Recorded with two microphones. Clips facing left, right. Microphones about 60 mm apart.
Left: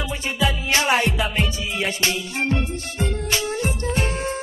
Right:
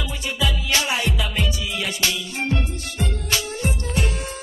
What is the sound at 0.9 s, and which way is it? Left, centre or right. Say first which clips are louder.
Music: left 4 dB; left.